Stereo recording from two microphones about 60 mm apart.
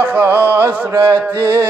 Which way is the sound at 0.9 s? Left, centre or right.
Right.